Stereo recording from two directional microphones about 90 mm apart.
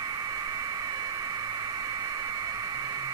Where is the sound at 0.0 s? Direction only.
50° right (ahead or behind).